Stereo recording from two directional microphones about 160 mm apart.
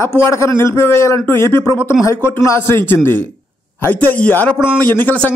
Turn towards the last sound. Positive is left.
turn(degrees=10)  # may be behind; listen again after turning